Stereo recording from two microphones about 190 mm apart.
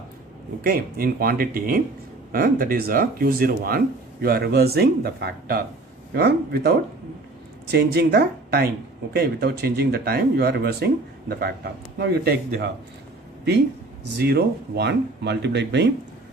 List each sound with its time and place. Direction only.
0.6 s speech: 50° right (ahead or behind)
7.7 s speech: 60° right (ahead or behind)
14.1 s speech: 60° right (ahead or behind)